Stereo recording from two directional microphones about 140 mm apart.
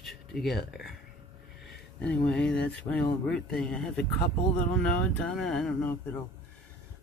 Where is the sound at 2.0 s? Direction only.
10° left (ahead or behind).